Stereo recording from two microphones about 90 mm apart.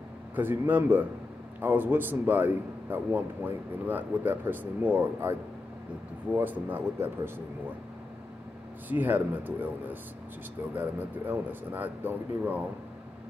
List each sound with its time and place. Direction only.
0.4 s a man's voice: 20° right (ahead or behind)
8.8 s a man's voice: 20° right (ahead or behind)